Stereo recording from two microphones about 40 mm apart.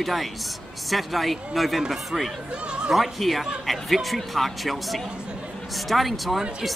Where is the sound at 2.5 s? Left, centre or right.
Right.